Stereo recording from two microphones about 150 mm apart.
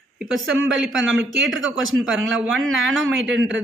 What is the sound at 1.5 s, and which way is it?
Speech, centre (ahead or behind).